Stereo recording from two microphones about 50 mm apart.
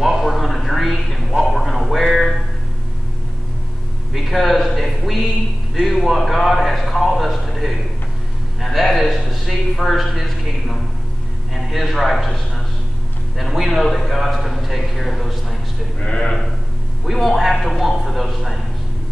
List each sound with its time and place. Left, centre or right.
0.0 s a sound: centre
4.1 s a sound: centre
11.5 s a man's voice: centre
13.4 s a man's voice: centre
16.0 s speech: centre
17.0 s a man's voice: centre